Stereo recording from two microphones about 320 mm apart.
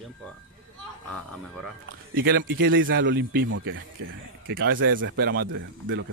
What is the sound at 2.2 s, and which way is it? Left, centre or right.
Speech, right.